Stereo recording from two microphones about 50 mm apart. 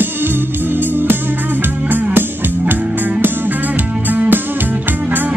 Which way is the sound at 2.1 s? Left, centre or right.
Right.